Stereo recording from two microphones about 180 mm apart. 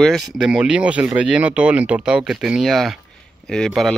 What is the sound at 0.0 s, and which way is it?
Speech, centre (ahead or behind).